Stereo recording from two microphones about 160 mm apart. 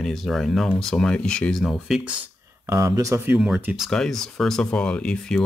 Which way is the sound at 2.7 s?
20° right (ahead or behind).